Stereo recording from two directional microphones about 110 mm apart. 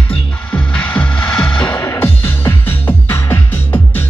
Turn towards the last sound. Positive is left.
turn(degrees=20)  # may be behind; listen again after turning